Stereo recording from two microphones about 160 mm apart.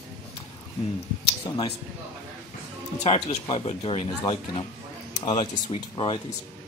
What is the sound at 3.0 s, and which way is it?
Speech, 40° left (ahead or behind).